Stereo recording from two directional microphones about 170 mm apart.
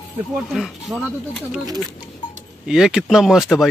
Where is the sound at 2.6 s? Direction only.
5° right (ahead or behind).